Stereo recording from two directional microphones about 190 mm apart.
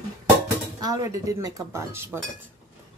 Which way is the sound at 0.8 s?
20° right (ahead or behind).